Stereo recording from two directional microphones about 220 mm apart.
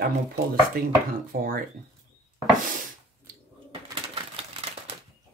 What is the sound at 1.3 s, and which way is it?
Speech, 40° right (ahead or behind).